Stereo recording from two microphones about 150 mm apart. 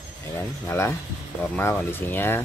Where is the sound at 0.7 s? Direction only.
15° left (ahead or behind).